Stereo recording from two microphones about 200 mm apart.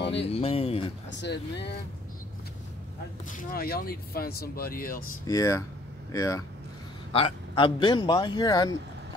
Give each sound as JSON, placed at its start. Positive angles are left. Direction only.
{"t": 0.0, "sound": "a sound", "side_deg": 60}
{"t": 0.3, "sound": "a man's voice", "side_deg": 30}
{"t": 1.1, "sound": "speech", "side_deg": 60}
{"t": 3.3, "sound": "speech", "side_deg": 45}
{"t": 5.2, "sound": "speech", "side_deg": 15}
{"t": 7.1, "sound": "a man's voice", "side_deg": 25}